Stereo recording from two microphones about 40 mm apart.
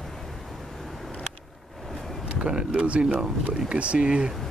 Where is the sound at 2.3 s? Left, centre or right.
Right.